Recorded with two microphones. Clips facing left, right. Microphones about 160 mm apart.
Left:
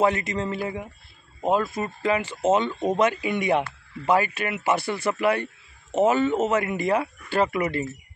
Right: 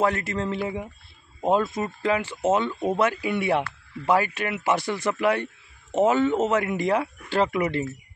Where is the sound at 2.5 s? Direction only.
20° left (ahead or behind); by 7.9 s 5° left (ahead or behind).